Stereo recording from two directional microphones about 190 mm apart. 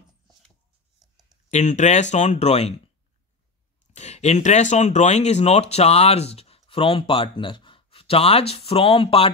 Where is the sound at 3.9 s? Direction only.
35° left (ahead or behind).